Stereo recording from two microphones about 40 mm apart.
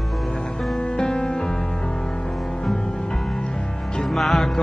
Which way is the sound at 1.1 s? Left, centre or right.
Left.